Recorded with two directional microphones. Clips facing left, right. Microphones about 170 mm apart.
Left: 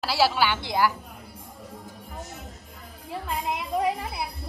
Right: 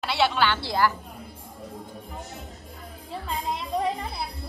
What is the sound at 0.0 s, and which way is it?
Speech, centre (ahead or behind).